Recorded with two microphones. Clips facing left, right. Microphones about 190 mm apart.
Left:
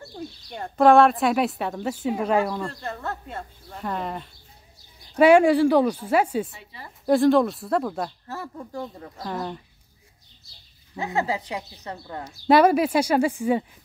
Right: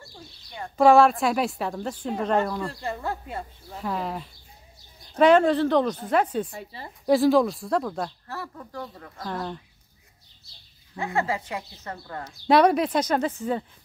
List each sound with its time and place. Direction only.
0.7 s speech: centre (ahead or behind)
5.1 s a woman's voice: 10° left (ahead or behind)
6.7 s a woman's voice: 30° right (ahead or behind)
7.1 s speech: centre (ahead or behind)
8.3 s speech: 20° left (ahead or behind)
9.2 s speech: 5° left (ahead or behind)
11.0 s a woman's voice: 20° left (ahead or behind)